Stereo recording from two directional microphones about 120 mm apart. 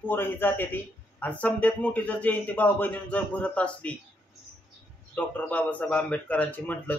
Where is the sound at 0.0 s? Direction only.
15° left (ahead or behind).